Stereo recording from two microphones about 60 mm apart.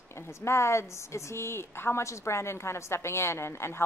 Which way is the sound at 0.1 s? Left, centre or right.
Left.